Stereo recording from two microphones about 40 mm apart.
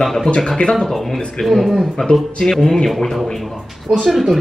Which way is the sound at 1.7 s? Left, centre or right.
Centre.